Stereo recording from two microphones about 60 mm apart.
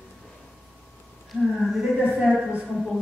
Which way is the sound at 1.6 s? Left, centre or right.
Centre.